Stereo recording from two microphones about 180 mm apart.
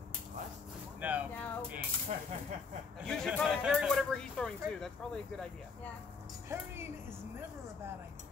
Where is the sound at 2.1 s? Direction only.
40° right (ahead or behind).